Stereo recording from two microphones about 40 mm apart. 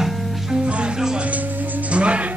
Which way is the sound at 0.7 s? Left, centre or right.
Right.